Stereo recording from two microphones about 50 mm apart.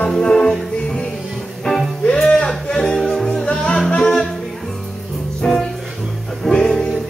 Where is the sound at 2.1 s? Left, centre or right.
Centre.